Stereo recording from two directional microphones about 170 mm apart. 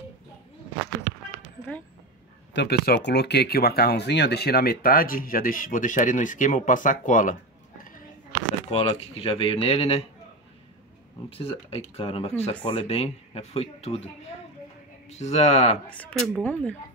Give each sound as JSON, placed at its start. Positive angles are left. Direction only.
{"t": 2.5, "sound": "speech", "side_deg": 80}
{"t": 8.6, "sound": "speech", "side_deg": 40}
{"t": 11.2, "sound": "speech", "side_deg": 35}
{"t": 15.0, "sound": "speech", "side_deg": 40}
{"t": 15.9, "sound": "speech", "side_deg": 10}